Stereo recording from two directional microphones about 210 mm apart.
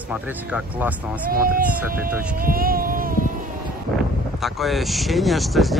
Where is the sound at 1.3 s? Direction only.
45° right (ahead or behind).